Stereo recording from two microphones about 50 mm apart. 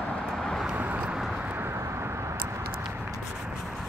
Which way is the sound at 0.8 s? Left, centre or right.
Right.